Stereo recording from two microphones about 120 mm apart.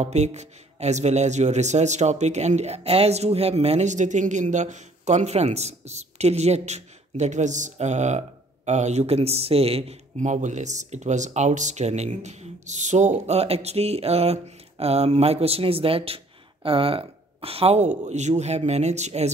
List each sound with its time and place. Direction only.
0.0 s a man's voice: 65° right (ahead or behind)